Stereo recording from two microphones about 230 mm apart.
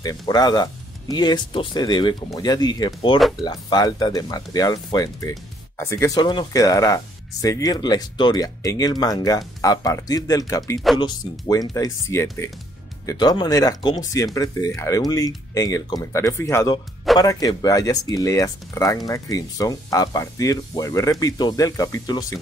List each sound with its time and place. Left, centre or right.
0.3 s speech: centre